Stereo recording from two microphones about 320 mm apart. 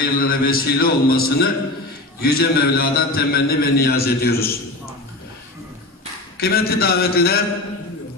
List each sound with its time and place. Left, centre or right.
0.0 s a man's voice: left
6.3 s a man's voice: left